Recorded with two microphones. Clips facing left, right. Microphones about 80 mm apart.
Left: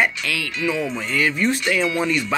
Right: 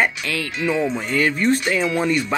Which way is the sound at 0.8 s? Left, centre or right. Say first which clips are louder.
Right 3 dB; centre.